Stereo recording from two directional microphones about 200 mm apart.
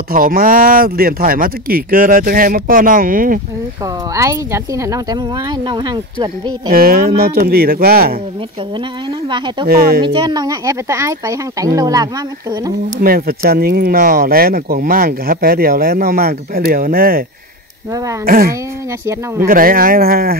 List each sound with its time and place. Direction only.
0.1 s speech: 45° right (ahead or behind)
3.8 s speech: 15° right (ahead or behind)
6.7 s speech: 50° right (ahead or behind)
9.7 s speech: 50° right (ahead or behind)
10.0 s speech: 25° right (ahead or behind)
13.0 s speech: 45° right (ahead or behind)
18.2 s speech: 45° right (ahead or behind)